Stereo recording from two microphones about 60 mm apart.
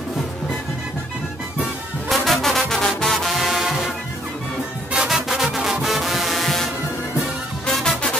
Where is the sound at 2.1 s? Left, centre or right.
Centre.